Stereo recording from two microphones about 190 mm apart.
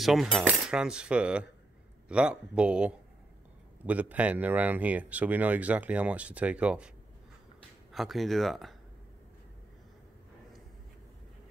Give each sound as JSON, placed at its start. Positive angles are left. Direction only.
{"t": 0.0, "sound": "cutlery", "side_deg": 0}
{"t": 3.8, "sound": "speech", "side_deg": -5}
{"t": 7.9, "sound": "cutlery", "side_deg": 0}